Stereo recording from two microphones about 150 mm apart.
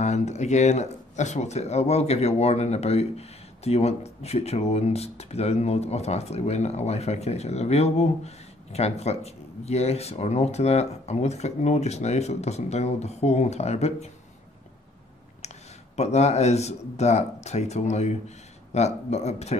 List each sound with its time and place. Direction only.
0.0 s speech: 50° left (ahead or behind)
16.0 s speech: 45° left (ahead or behind)